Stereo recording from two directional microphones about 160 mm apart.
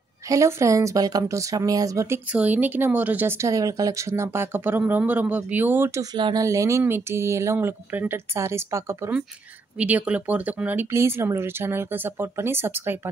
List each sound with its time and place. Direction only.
0.3 s speech: 20° right (ahead or behind)